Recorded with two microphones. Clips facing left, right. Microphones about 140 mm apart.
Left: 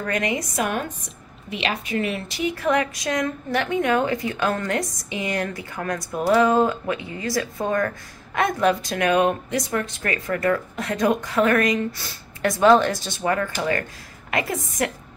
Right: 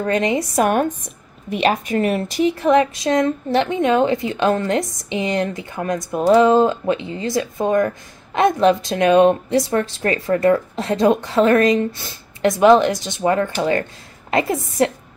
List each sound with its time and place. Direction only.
0.0 s a woman's voice: 25° right (ahead or behind)
0.6 s speech: 45° right (ahead or behind)
2.6 s a woman's voice: 25° right (ahead or behind)